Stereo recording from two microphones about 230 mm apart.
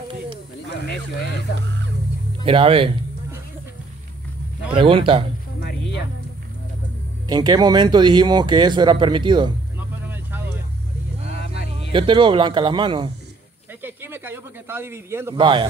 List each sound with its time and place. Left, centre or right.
1.5 s music: left
2.4 s speech: right
4.7 s speech: right
5.6 s music: left
7.2 s speech: centre
9.8 s vehicle: centre
11.3 s vehicle: left
11.9 s speech: right
13.8 s speech: centre